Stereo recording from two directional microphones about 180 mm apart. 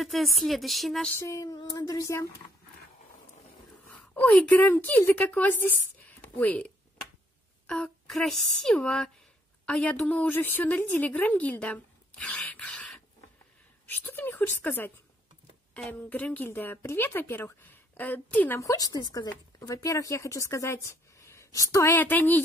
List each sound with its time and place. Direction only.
0.0 s speech: centre (ahead or behind)
1.1 s a sound: 15° left (ahead or behind)
3.9 s a woman's voice: 10° left (ahead or behind)